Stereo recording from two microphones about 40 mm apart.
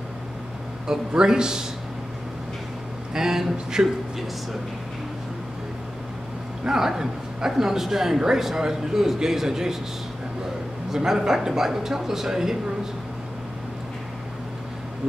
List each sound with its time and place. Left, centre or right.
0.8 s a woman's voice: centre
3.2 s a woman's voice: centre
3.8 s speech: right
6.6 s a woman's voice: centre
10.9 s a woman's voice: centre